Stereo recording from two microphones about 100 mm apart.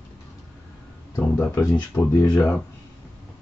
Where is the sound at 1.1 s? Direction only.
25° left (ahead or behind).